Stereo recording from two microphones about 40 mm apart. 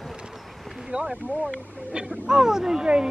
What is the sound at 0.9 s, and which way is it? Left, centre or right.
Speech, right.